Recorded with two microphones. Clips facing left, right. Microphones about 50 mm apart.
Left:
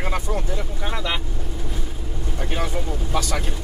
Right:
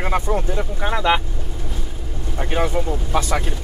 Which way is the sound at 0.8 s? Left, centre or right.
Right.